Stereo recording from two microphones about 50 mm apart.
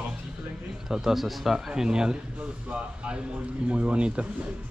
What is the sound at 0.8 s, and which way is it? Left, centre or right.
Speech, centre.